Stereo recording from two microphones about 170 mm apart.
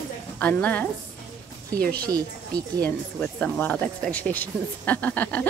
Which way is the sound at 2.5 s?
5° left (ahead or behind).